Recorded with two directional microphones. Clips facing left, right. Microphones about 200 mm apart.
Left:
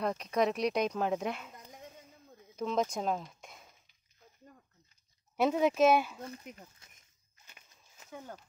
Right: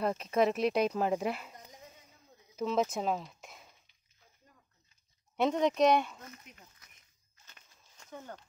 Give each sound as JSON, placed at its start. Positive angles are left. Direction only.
{"t": 0.0, "sound": "speech", "side_deg": -5}
{"t": 2.5, "sound": "speech", "side_deg": -5}
{"t": 5.3, "sound": "speech", "side_deg": 5}
{"t": 6.8, "sound": "walk", "side_deg": 25}
{"t": 7.4, "sound": "walk", "side_deg": 10}